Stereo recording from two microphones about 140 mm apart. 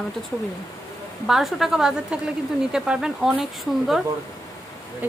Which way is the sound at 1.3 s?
Centre (ahead or behind).